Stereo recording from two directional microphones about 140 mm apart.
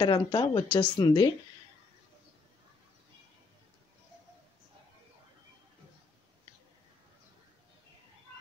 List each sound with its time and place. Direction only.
0.0 s speech: 30° left (ahead or behind)